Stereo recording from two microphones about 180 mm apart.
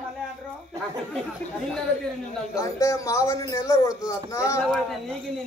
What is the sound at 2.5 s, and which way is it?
Female singing, 15° left (ahead or behind).